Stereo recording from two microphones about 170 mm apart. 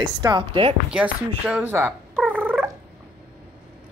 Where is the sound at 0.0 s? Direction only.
25° right (ahead or behind).